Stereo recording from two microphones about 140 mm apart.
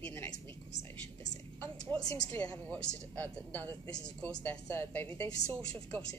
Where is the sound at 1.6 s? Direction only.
5° left (ahead or behind).